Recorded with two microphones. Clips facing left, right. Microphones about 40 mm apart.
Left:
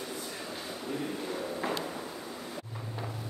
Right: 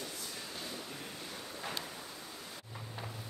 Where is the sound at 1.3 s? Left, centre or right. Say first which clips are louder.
Left 9 dB; left.